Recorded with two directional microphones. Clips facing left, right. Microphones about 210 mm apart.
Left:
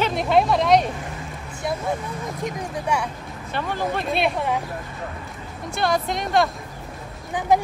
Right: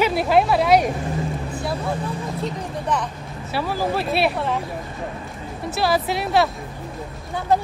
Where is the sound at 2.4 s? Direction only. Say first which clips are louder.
Right 1 dB; 15° left (ahead or behind).